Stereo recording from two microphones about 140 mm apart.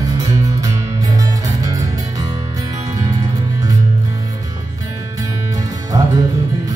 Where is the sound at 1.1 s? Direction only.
25° right (ahead or behind).